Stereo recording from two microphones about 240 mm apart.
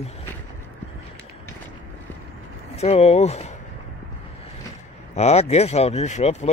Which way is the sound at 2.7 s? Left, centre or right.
Left.